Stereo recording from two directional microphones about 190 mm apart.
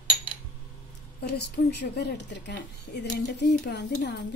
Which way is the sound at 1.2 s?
60° left (ahead or behind).